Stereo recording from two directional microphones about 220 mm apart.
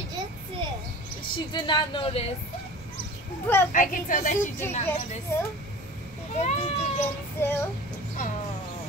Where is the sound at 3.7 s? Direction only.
35° left (ahead or behind).